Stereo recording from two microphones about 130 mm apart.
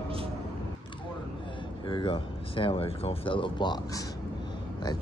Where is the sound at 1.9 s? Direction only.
40° left (ahead or behind).